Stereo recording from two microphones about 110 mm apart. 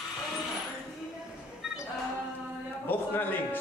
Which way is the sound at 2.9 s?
20° left (ahead or behind).